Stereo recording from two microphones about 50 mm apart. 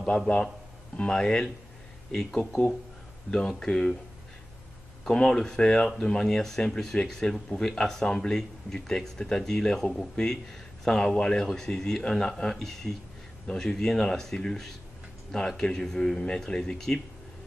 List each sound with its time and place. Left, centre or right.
0.9 s speech: centre
5.0 s speech: centre